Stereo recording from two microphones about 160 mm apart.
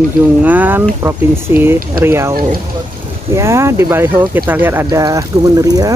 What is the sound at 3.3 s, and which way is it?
Speech, 15° right (ahead or behind).